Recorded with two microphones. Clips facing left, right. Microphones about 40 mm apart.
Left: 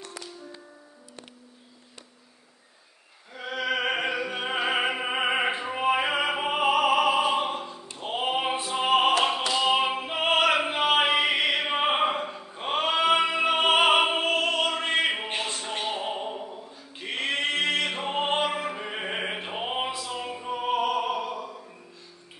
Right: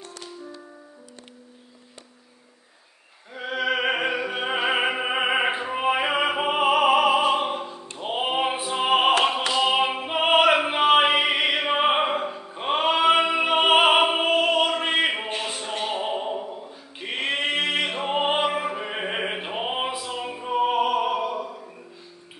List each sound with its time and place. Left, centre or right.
3.3 s opera: centre
8.0 s music: centre
15.4 s a sound: centre